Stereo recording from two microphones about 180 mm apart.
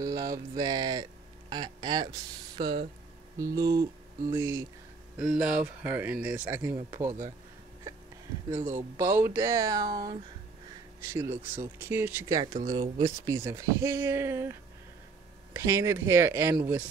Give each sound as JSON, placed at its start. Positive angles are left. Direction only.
{"t": 0.0, "sound": "a sound", "side_deg": -20}
{"t": 1.5, "sound": "speech", "side_deg": -25}
{"t": 3.3, "sound": "a sound", "side_deg": -20}
{"t": 4.3, "sound": "speech", "side_deg": -15}
{"t": 5.2, "sound": "speech", "side_deg": -5}
{"t": 8.5, "sound": "speech", "side_deg": -15}
{"t": 11.1, "sound": "speech", "side_deg": -15}